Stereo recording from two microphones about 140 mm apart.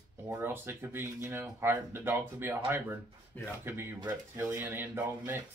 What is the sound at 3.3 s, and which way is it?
Speech, 10° left (ahead or behind).